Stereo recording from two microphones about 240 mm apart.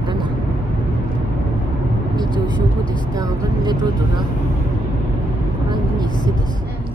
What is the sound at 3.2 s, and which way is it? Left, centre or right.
Speech, centre.